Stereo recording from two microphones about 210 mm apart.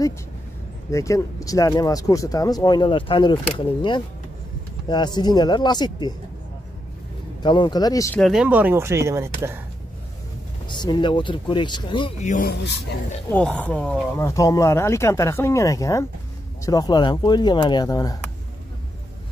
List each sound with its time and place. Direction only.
0.9 s speech: 15° left (ahead or behind)
7.4 s speech: 20° left (ahead or behind)
8.2 s speech: centre (ahead or behind)
10.7 s speech: 20° left (ahead or behind)
12.2 s speech: 35° left (ahead or behind)
13.3 s speech: 5° left (ahead or behind)